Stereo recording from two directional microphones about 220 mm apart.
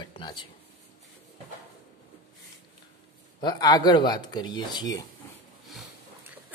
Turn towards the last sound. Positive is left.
turn(degrees=20)  # may be behind; listen again after turning